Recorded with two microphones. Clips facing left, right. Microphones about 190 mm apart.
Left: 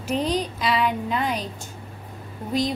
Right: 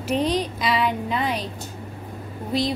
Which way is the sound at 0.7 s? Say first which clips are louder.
Even; centre (ahead or behind).